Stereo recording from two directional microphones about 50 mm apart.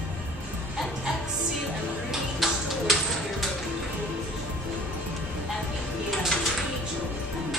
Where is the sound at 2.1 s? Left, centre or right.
Centre.